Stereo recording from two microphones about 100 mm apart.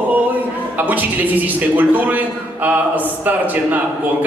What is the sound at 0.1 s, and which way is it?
A man's voice, 20° right (ahead or behind).